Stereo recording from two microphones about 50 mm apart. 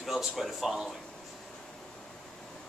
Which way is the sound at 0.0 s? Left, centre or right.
Centre.